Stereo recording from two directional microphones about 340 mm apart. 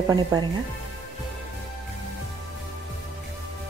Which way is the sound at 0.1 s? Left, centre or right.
Centre.